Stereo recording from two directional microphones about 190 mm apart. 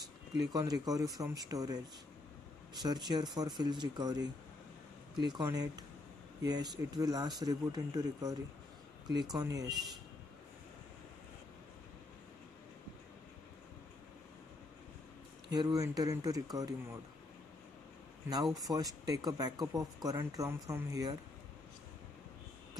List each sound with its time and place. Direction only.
0.4 s speech: 20° right (ahead or behind)
2.8 s speech: 20° right (ahead or behind)
15.5 s speech: 20° right (ahead or behind)
18.3 s speech: 20° right (ahead or behind)